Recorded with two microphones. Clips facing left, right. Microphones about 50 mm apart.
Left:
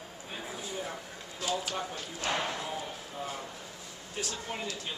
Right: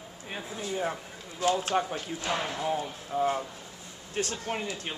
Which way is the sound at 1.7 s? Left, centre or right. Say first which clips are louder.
Right 9 dB; right.